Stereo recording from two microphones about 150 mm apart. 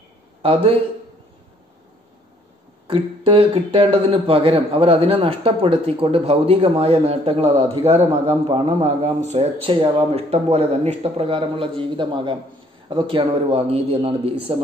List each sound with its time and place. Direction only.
0.4 s speech: 35° right (ahead or behind)
2.9 s a man's voice: 35° right (ahead or behind)